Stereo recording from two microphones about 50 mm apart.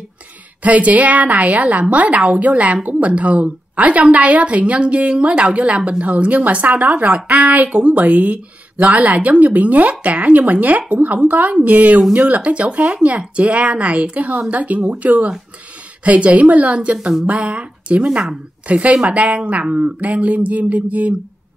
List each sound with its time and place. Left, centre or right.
0.6 s a woman's voice: right